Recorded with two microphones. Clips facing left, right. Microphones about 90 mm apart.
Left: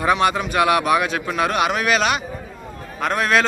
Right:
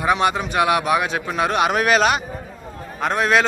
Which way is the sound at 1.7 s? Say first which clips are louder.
Right 2 dB; 40° right (ahead or behind).